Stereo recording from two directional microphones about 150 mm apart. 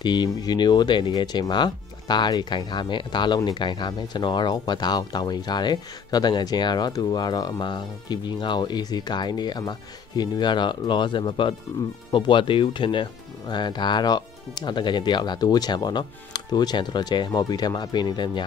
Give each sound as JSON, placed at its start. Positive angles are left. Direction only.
{"t": 0.0, "sound": "speech", "side_deg": 30}